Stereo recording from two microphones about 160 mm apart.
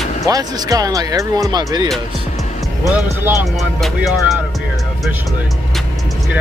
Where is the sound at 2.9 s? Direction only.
10° right (ahead or behind).